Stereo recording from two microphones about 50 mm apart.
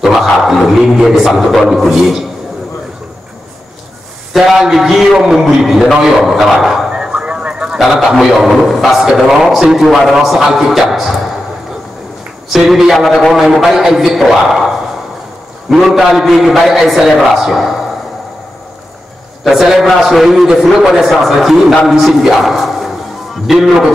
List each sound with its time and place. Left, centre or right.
0.0 s a man's voice: centre
4.3 s a man's voice: centre
6.9 s a sound: centre
7.9 s a man's voice: centre
12.5 s a man's voice: centre
15.7 s a man's voice: centre
19.4 s a man's voice: centre